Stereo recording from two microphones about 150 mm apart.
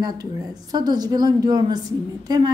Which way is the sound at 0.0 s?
25° right (ahead or behind).